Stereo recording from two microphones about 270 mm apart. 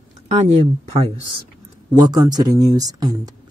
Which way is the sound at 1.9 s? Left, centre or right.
Centre.